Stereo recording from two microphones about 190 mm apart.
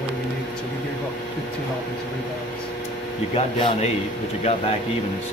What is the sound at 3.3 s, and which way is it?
Speech, 30° left (ahead or behind).